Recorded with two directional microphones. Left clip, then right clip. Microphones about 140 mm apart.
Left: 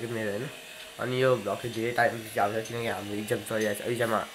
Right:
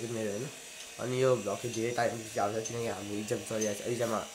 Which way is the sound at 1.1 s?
25° right (ahead or behind).